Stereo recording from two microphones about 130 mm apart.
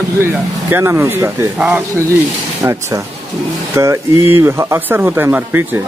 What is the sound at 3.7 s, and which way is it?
Speech, 20° right (ahead or behind).